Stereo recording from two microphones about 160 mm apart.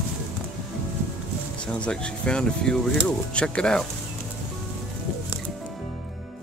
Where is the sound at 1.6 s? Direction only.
5° left (ahead or behind).